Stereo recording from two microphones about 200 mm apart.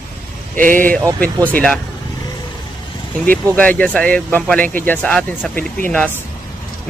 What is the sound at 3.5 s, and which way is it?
A man's voice, 5° left (ahead or behind).